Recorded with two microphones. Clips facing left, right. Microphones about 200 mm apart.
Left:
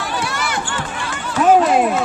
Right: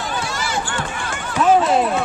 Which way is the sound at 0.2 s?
60° left (ahead or behind).